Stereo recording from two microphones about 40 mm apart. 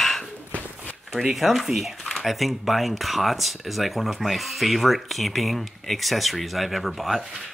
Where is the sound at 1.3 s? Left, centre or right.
Centre.